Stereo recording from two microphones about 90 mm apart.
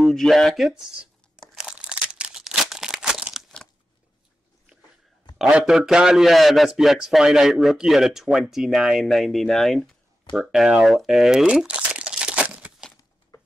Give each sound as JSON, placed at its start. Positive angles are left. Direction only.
{"t": 0.0, "sound": "a man's voice", "side_deg": 0}
{"t": 1.5, "sound": "a sound", "side_deg": -5}
{"t": 5.4, "sound": "a man's voice", "side_deg": -10}